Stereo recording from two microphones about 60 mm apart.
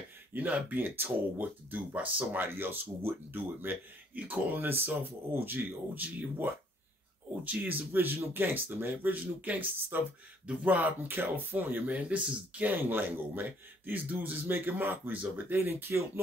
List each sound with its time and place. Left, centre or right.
0.3 s speech: right
4.6 s speech: right